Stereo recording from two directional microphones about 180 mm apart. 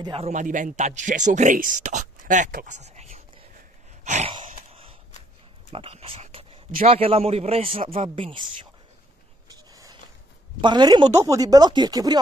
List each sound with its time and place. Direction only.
0.0 s a man's voice: 30° right (ahead or behind)
0.3 s speech: 45° right (ahead or behind)
4.0 s sigh: 40° right (ahead or behind)
4.5 s a sound: 35° right (ahead or behind)
5.7 s a man's voice: 30° right (ahead or behind)
9.5 s a sound: 20° right (ahead or behind)
10.6 s speech: 25° right (ahead or behind)